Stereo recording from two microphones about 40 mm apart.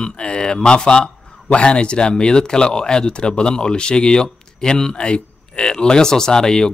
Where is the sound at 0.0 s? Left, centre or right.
Left.